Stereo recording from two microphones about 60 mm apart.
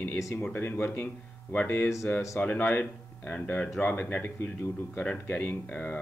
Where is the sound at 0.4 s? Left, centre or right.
Left.